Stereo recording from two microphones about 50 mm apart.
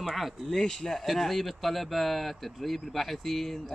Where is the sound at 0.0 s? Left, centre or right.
Centre.